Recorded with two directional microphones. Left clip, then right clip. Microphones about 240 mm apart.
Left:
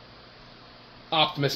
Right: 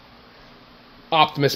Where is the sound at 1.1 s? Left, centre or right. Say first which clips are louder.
Right 6 dB; right.